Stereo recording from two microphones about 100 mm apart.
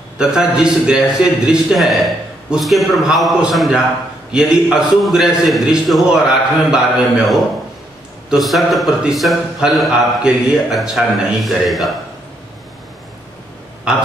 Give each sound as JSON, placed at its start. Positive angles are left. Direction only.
{"t": 0.2, "sound": "a man's voice", "side_deg": -5}
{"t": 8.3, "sound": "a man's voice", "side_deg": 0}
{"t": 13.9, "sound": "speech", "side_deg": -5}